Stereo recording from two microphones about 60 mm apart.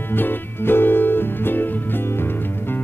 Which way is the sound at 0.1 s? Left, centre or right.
Left.